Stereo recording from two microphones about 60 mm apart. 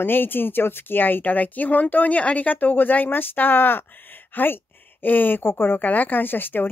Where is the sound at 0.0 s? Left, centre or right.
Left.